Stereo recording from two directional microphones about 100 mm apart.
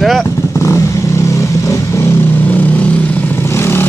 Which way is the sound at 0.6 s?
30° left (ahead or behind).